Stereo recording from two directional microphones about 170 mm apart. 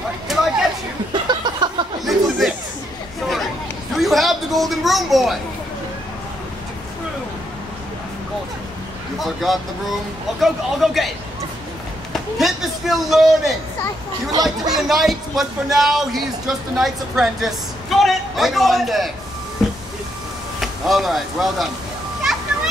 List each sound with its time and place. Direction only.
0.3 s a sound: centre (ahead or behind)
1.1 s a sound: 25° right (ahead or behind)
2.0 s chatter: centre (ahead or behind)
3.9 s a sound: centre (ahead or behind)
9.2 s speech: centre (ahead or behind)
12.1 s chop: centre (ahead or behind)
14.3 s speech: 25° right (ahead or behind)
14.9 s speech: centre (ahead or behind)
20.6 s speech: centre (ahead or behind)